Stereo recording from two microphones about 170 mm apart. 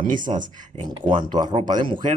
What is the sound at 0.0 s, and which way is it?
Speech, 50° right (ahead or behind).